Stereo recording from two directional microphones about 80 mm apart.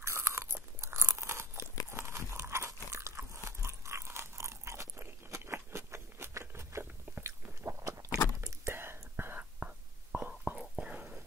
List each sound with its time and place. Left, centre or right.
0.0 s crunch: right
8.4 s whispering: right; by 11.1 s centre